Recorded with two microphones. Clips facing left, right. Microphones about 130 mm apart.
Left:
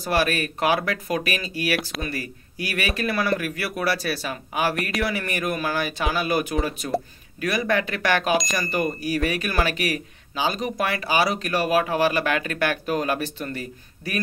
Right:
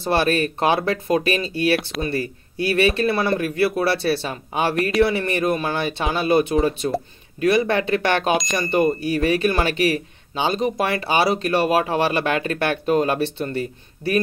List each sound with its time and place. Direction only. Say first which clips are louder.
0.0 s speech: right 4 dB; 30° right (ahead or behind)
8.3 s speech: right 2 dB; centre (ahead or behind)
8.5 s speech: right 6 dB; 25° right (ahead or behind)